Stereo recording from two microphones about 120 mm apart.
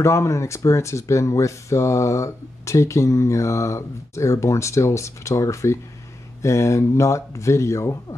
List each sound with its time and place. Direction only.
0.0 s speech: 25° left (ahead or behind)